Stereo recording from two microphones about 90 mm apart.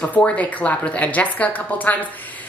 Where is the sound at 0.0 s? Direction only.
15° left (ahead or behind).